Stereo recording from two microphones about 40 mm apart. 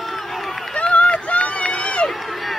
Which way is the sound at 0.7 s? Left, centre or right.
Left.